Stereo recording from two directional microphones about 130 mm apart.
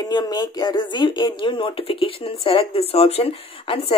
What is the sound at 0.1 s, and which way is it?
Speech, 30° left (ahead or behind).